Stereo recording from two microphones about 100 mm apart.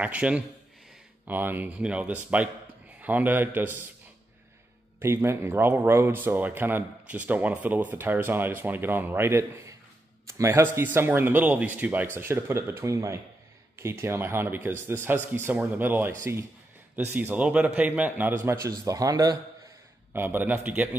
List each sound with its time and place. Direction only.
0.0 s a man's voice: 10° right (ahead or behind)
5.0 s a man's voice: 25° right (ahead or behind)
18.4 s speech: 30° right (ahead or behind)
20.1 s speech: 20° right (ahead or behind)